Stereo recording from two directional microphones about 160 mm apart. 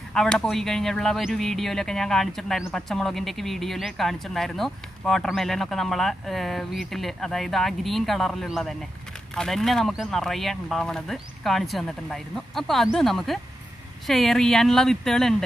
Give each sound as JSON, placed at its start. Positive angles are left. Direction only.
{"t": 0.1, "sound": "speech", "side_deg": 5}